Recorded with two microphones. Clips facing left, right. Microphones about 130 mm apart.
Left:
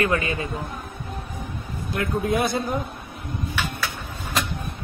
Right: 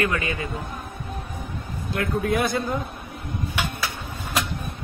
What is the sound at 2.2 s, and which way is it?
Speech, 20° left (ahead or behind).